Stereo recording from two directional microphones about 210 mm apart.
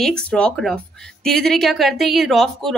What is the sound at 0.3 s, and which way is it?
Speech, 5° left (ahead or behind).